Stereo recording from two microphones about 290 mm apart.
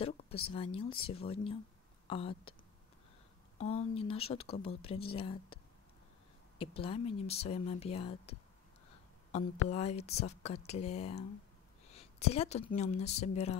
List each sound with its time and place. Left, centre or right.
0.3 s speech: centre
3.5 s speech: left
6.6 s a woman's voice: centre